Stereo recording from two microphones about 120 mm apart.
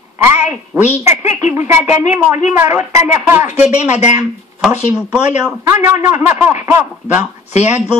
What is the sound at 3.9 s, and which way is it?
Speech, 75° left (ahead or behind).